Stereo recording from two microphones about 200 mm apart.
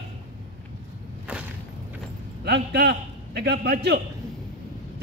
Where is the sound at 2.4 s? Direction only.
55° right (ahead or behind).